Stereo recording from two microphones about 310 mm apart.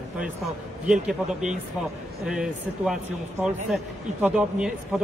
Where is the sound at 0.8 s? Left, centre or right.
Centre.